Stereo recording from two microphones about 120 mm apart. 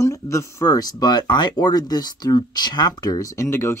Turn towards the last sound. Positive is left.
turn(degrees=20)  # may be behind; listen again after turning